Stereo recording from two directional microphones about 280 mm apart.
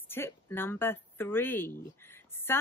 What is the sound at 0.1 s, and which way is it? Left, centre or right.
Speech, centre.